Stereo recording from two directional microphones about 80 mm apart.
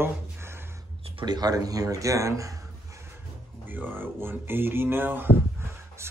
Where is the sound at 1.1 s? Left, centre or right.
Right.